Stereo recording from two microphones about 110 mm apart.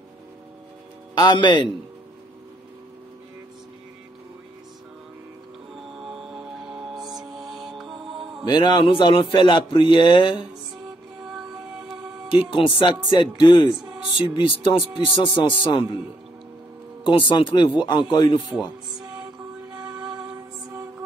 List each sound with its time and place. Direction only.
1.2 s a man's voice: 45° left (ahead or behind)
5.9 s music: 5° right (ahead or behind)
8.5 s a man's voice: 45° left (ahead or behind)
12.4 s a man's voice: 50° left (ahead or behind)
13.7 s music: 5° right (ahead or behind)
14.2 s a man's voice: 55° left (ahead or behind)
17.0 s a man's voice: 50° left (ahead or behind)
18.5 s speech: 5° right (ahead or behind)
19.7 s music: 10° right (ahead or behind)